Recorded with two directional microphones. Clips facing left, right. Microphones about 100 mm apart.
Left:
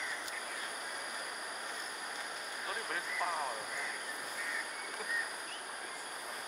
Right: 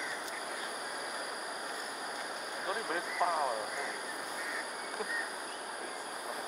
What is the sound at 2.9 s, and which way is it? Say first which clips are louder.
Speech: right 5 dB; 15° right (ahead or behind).